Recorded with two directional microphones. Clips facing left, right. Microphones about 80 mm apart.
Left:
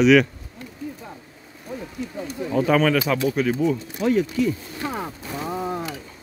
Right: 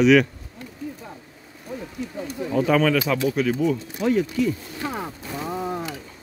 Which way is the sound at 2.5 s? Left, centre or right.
Left.